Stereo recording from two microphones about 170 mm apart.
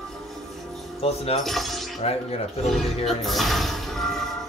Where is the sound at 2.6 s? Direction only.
Centre (ahead or behind).